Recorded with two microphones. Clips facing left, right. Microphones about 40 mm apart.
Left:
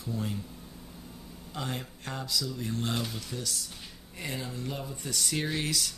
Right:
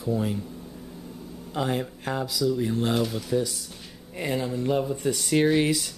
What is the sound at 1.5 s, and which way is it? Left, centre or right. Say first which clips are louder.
Speech: right 9 dB; centre.